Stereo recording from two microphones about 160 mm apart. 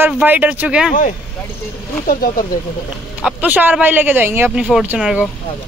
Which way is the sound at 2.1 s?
60° left (ahead or behind).